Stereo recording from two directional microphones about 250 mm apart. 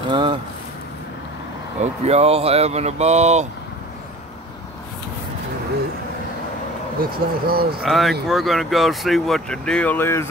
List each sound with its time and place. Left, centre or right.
0.1 s speech: centre
1.8 s speech: right
7.0 s speech: right
7.8 s speech: centre